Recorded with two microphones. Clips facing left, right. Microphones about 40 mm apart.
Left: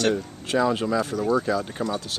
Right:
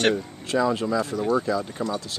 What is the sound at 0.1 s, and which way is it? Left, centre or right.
Speech, centre.